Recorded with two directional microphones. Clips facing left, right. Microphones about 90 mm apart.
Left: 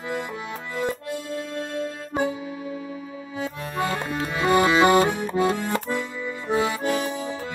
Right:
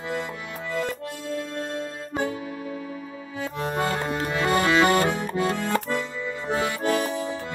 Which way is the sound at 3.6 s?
35° right (ahead or behind).